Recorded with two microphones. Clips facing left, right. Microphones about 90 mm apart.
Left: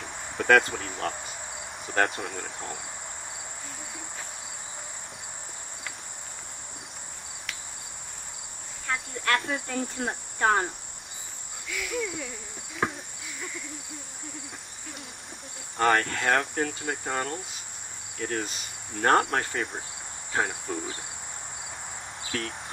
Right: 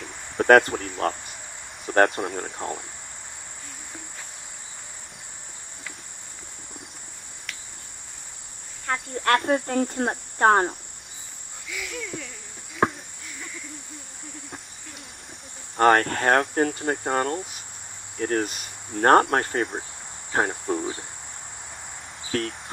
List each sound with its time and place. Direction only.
0.4 s cricket: 45° right (ahead or behind)
8.8 s speech: 45° right (ahead or behind)
11.7 s cricket: centre (ahead or behind)
12.8 s a sound: 45° right (ahead or behind)
15.8 s cricket: 45° right (ahead or behind)
20.3 s insect: 40° right (ahead or behind)
22.3 s insect: 40° right (ahead or behind)